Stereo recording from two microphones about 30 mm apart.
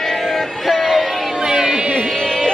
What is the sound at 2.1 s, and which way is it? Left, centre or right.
Music, left.